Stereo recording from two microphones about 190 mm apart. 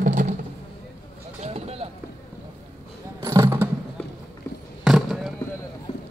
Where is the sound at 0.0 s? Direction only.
40° right (ahead or behind).